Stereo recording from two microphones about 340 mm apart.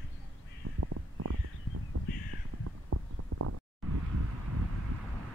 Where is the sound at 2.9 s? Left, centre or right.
Right.